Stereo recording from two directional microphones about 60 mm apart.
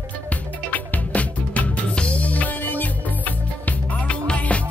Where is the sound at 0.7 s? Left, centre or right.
Left.